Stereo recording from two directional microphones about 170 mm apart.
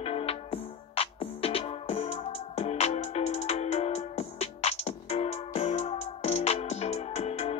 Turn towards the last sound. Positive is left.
turn(degrees=40)  # may be behind; listen again after turning